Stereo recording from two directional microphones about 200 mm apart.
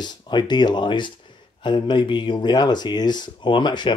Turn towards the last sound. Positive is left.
turn(degrees=20)  # may be behind; listen again after turning